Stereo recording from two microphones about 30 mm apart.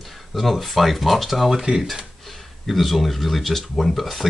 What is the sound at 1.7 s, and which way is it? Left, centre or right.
Speech, right.